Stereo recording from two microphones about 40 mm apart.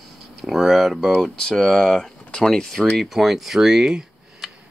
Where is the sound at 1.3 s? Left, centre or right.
Centre.